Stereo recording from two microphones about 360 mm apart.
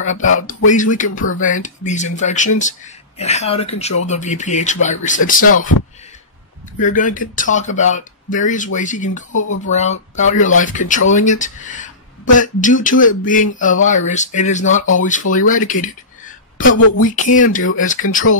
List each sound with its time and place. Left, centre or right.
0.0 s speech: left
6.8 s speech: left
9.3 s speech: left
9.7 s speech: centre
16.6 s speech: left
17.1 s speech: left